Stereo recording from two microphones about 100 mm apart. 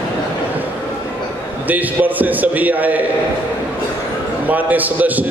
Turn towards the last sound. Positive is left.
turn(degrees=-15)  # may be behind; listen again after turning